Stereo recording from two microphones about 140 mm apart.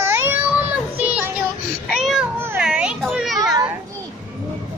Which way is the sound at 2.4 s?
10° right (ahead or behind).